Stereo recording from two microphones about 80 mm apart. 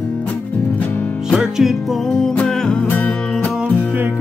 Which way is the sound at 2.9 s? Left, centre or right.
Left.